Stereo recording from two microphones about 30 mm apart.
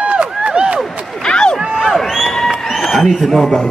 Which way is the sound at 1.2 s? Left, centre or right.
Left.